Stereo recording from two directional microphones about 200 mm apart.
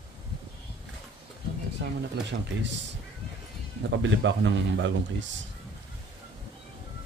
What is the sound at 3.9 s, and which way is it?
Speech, 65° right (ahead or behind).